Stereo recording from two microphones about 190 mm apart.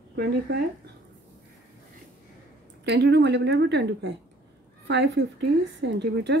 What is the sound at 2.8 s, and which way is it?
A woman's voice, 65° right (ahead or behind).